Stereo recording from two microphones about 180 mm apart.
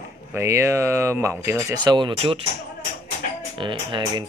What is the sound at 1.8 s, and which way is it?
Speech, 25° right (ahead or behind).